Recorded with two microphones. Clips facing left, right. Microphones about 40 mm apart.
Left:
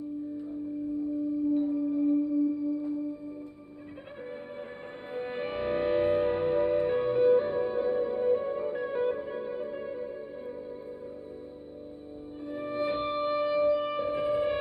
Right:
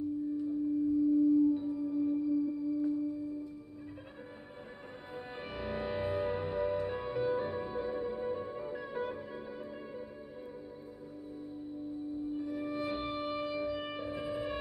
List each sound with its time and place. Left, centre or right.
1.5 s music: left
5.1 s music: left
12.5 s music: left